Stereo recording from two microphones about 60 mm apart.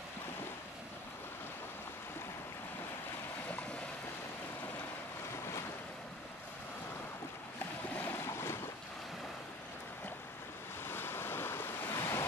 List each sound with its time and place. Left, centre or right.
7.9 s boat: left
8.2 s boat: left
10.9 s waves: left
11.9 s waves: left